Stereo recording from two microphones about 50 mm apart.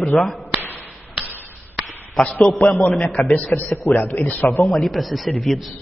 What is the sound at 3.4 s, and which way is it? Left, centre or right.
Speech, left.